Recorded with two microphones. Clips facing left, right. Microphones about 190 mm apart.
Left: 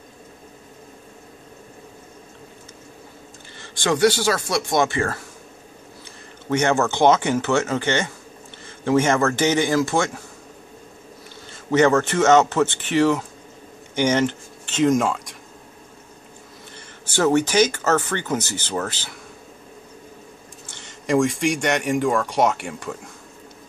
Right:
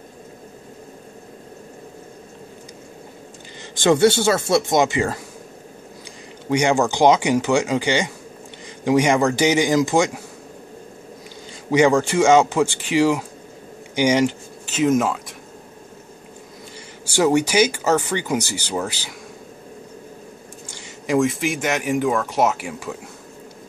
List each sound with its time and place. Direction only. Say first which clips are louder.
3.8 s speech: right 3 dB; 25° right (ahead or behind)
6.5 s speech: right 1 dB; 15° right (ahead or behind)
11.7 s speech: right 1 dB; 10° right (ahead or behind)
17.0 s speech: right 1 dB; 10° right (ahead or behind)
20.6 s speech: even; 10° right (ahead or behind)